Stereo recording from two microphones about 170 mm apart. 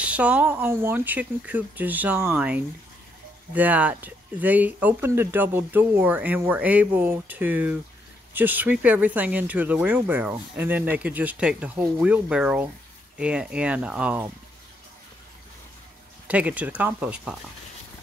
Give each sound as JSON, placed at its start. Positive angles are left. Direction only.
{"t": 0.0, "sound": "speech", "side_deg": -5}
{"t": 16.3, "sound": "speech", "side_deg": -10}